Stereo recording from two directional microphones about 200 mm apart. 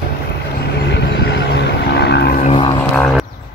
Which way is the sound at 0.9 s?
60° left (ahead or behind).